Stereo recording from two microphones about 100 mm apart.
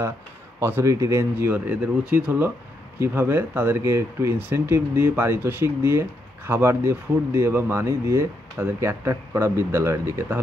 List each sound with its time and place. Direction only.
0.6 s speech: 25° right (ahead or behind)
1.3 s speech: 20° right (ahead or behind)